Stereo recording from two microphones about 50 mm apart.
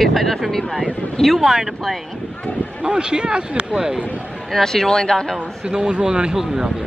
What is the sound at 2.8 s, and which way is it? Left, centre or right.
Speech, centre.